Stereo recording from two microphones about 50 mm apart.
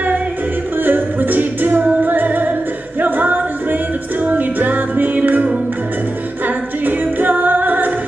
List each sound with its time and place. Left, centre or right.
0.7 s music: right